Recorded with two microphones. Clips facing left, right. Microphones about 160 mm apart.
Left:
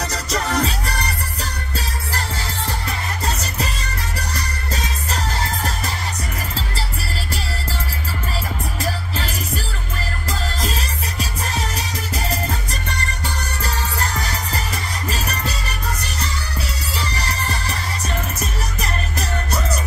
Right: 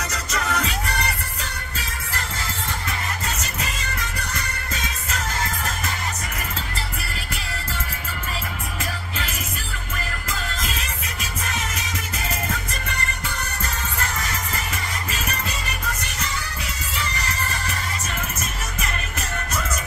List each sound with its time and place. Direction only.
0.1 s music: 35° left (ahead or behind)
3.3 s music: 35° left (ahead or behind)
10.6 s music: 35° left (ahead or behind)
13.9 s music: 35° left (ahead or behind)
16.9 s music: 35° left (ahead or behind)